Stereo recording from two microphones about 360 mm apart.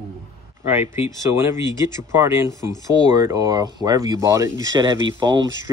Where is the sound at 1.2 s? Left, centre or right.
Centre.